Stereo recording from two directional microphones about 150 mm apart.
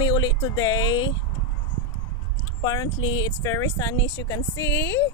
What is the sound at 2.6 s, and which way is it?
Speech, 25° left (ahead or behind).